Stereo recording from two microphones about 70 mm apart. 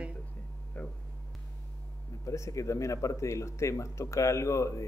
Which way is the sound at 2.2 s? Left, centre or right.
Left.